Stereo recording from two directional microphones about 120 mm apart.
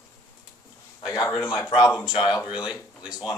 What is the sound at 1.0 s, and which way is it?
Speech, 30° left (ahead or behind).